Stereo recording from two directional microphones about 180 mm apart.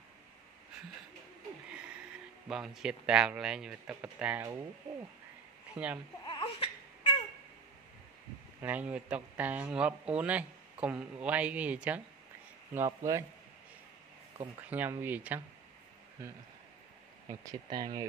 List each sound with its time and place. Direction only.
1.7 s speech: 5° right (ahead or behind)
5.8 s speech: 5° right (ahead or behind)
6.2 s crying: 30° left (ahead or behind)
8.5 s speech: 10° right (ahead or behind)
14.7 s speech: 10° right (ahead or behind)
17.3 s speech: 20° right (ahead or behind)